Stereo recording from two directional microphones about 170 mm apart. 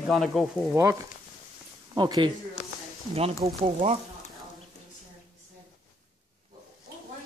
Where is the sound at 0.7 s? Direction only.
20° right (ahead or behind).